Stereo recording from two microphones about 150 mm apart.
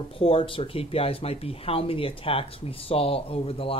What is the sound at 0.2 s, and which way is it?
Speech, 40° left (ahead or behind).